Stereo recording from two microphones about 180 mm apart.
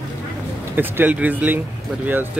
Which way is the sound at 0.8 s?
10° right (ahead or behind).